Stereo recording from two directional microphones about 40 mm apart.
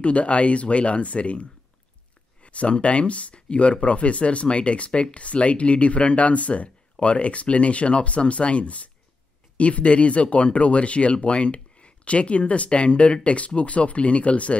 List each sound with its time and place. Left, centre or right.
0.0 s speech: left